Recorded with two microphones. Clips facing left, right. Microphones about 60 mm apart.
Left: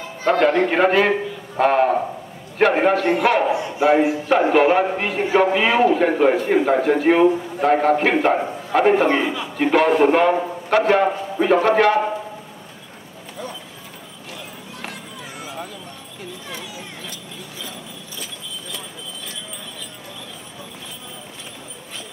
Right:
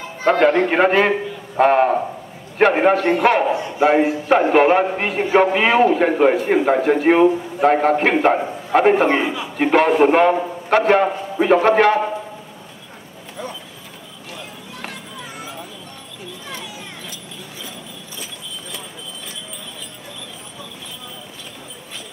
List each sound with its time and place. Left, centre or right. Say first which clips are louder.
0.2 s a man's voice: right 2 dB; right